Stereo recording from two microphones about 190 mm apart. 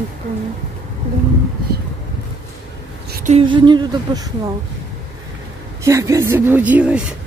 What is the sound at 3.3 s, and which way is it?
Speech, 25° right (ahead or behind).